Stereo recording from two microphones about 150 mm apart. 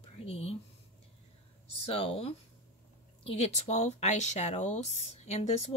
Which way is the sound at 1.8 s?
40° left (ahead or behind).